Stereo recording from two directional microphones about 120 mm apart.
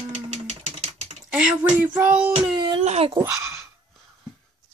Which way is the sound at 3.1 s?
20° right (ahead or behind).